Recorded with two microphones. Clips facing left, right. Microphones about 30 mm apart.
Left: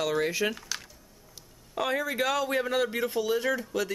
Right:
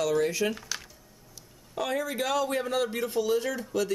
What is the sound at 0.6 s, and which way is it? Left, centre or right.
Typing, centre.